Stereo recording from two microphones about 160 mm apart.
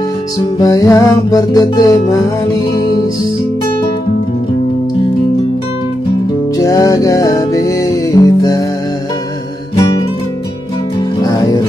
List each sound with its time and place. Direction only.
0.6 s music: 20° left (ahead or behind)
6.6 s music: 20° left (ahead or behind)
11.2 s music: 25° left (ahead or behind)